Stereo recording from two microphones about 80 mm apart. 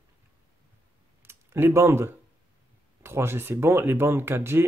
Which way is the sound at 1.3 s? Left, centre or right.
Right.